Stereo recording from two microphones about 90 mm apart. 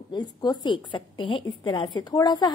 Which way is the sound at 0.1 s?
50° left (ahead or behind).